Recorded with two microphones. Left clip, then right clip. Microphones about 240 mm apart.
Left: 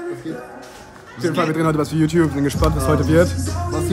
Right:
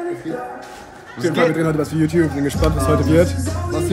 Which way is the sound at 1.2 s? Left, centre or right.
Centre.